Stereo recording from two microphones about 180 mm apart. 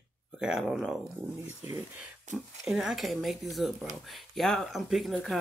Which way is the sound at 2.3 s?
45° right (ahead or behind).